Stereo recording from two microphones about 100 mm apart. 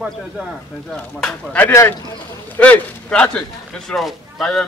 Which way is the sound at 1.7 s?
25° left (ahead or behind).